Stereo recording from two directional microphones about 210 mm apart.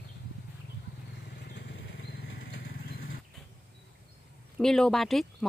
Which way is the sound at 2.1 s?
50° left (ahead or behind).